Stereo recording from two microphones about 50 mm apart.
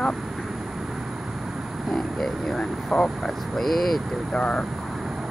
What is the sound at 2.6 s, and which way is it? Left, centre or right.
Speech, centre.